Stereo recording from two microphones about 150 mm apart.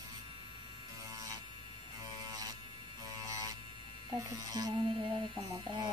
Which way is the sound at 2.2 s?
25° right (ahead or behind).